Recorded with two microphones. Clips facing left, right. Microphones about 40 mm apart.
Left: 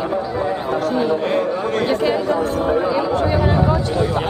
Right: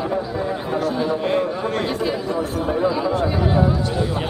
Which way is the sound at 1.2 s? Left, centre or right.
Centre.